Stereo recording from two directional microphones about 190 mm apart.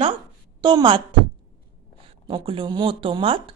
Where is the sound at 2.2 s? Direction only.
30° right (ahead or behind).